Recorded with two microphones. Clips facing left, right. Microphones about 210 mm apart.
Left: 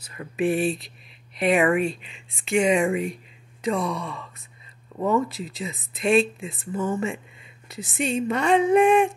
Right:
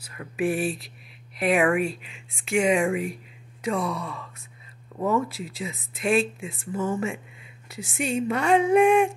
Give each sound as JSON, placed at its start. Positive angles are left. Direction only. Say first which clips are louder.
{"t": 0.0, "sound": "speech", "louder": "left 2 dB", "side_deg": -5}